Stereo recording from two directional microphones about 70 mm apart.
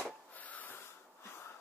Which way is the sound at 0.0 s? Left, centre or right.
Left.